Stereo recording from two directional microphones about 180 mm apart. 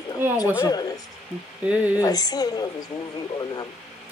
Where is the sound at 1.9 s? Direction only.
20° left (ahead or behind).